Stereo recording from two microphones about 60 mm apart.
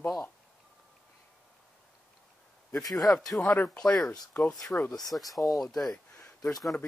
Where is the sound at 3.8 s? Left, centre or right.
Centre.